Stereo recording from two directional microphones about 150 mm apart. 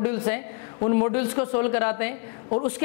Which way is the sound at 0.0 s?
15° left (ahead or behind).